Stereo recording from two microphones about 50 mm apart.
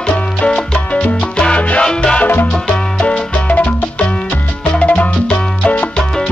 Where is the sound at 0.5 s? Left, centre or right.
Centre.